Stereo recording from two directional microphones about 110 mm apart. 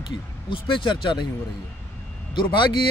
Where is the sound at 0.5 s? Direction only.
50° left (ahead or behind).